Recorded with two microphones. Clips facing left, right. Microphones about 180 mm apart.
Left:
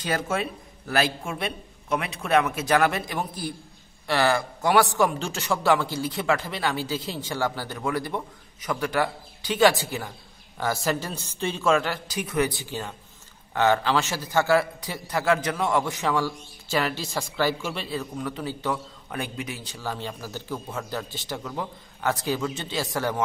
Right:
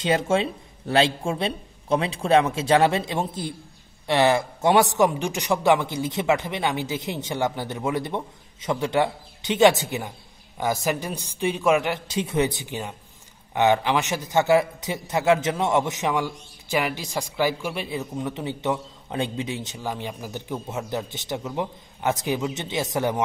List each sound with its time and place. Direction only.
0.0 s a man's voice: 25° right (ahead or behind)